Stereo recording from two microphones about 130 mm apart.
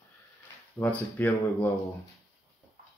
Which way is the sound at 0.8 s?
10° left (ahead or behind).